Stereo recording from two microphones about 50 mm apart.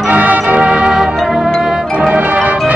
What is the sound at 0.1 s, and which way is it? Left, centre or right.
Music, right.